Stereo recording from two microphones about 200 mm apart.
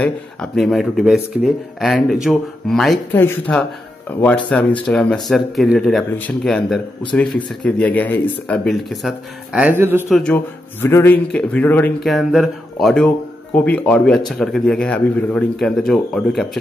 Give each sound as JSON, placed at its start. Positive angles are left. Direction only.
{"t": 0.0, "sound": "speech", "side_deg": 0}
{"t": 10.1, "sound": "speech", "side_deg": 5}